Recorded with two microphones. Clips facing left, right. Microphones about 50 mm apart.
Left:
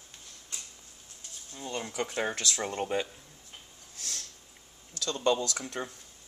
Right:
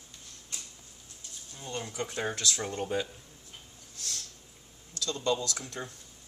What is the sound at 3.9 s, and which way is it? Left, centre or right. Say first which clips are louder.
Sniff: even; left.